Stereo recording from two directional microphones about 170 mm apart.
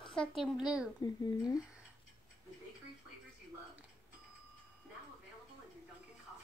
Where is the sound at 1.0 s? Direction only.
25° left (ahead or behind).